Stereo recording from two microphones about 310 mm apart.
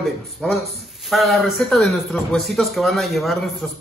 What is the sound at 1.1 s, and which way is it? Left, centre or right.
A man's voice, centre.